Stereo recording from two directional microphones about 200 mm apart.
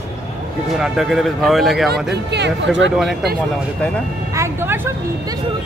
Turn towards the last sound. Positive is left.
turn(degrees=-10)  # may be behind; listen again after turning